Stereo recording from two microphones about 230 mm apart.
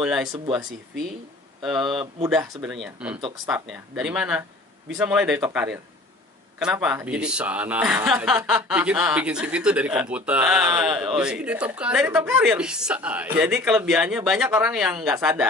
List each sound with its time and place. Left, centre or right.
0.0 s speech: centre
0.3 s speech: centre
1.6 s speech: centre